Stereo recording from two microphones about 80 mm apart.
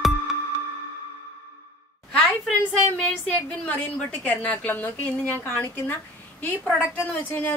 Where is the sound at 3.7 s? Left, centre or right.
Centre.